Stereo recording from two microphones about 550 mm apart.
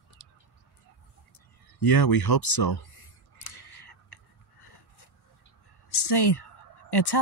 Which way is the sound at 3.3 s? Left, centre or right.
Left.